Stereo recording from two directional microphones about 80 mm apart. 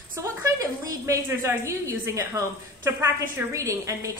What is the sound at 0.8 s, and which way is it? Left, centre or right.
Speech, right.